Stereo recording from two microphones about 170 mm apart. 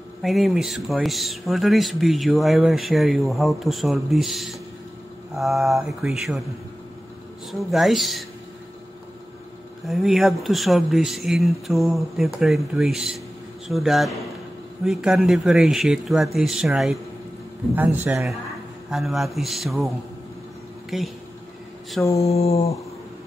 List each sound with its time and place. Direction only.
0.2 s speech: centre (ahead or behind)
7.7 s speech: centre (ahead or behind)
9.8 s speech: centre (ahead or behind)
17.7 s a man's voice: 10° right (ahead or behind)
18.9 s speech: centre (ahead or behind)
20.9 s speech: centre (ahead or behind)
22.2 s mantra: 35° left (ahead or behind)